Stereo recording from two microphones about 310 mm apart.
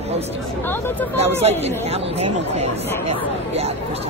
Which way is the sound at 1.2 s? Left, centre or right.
Centre.